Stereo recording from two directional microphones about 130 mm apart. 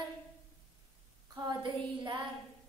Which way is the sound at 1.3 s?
35° right (ahead or behind).